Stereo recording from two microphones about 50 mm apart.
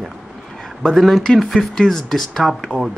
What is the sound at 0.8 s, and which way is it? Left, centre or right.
Speech, centre.